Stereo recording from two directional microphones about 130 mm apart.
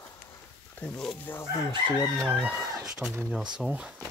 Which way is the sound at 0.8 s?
5° left (ahead or behind).